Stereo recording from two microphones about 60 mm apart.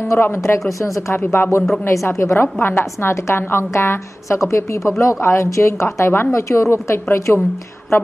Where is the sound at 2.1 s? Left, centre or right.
Left.